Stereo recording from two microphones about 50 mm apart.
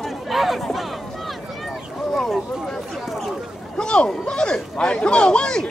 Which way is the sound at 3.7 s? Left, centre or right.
Centre.